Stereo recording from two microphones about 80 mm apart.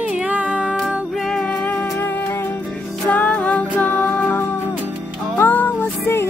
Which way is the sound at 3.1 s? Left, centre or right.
Centre.